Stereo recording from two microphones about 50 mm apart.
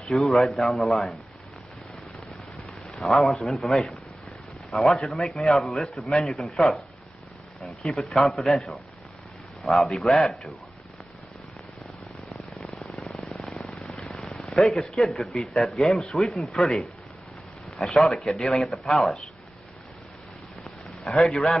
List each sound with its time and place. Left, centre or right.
0.0 s a man's voice: centre
3.1 s a man's voice: centre
3.3 s a man's voice: centre
8.0 s a man's voice: centre
9.8 s a man's voice: centre
13.1 s a sound: centre
13.6 s a sound: centre
14.4 s a man's voice: centre
20.6 s a sound: centre
21.2 s a man's voice: centre